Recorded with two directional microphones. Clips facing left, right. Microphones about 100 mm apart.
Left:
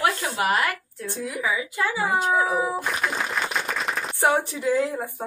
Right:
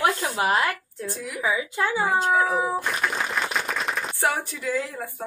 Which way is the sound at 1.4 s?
25° right (ahead or behind).